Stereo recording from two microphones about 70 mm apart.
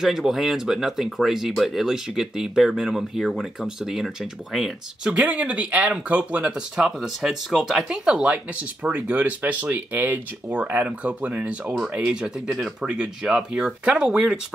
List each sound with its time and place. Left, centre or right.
0.0 s speech: centre
5.1 s speech: centre
6.8 s speech: centre